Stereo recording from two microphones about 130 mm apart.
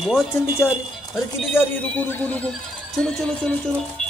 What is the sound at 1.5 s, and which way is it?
Speech, 15° left (ahead or behind).